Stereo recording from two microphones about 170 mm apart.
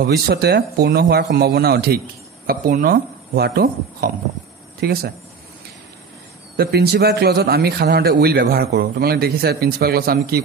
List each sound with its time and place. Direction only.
0.0 s speech: 65° right (ahead or behind)
6.5 s a man's voice: 65° right (ahead or behind)